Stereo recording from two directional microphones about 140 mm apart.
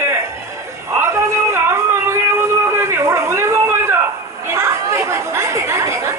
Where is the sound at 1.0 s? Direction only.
20° right (ahead or behind).